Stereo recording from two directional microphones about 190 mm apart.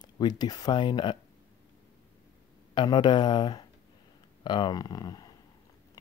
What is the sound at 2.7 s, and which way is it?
Speech, 25° left (ahead or behind).